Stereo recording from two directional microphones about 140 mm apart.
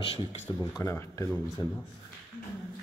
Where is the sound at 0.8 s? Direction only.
20° left (ahead or behind).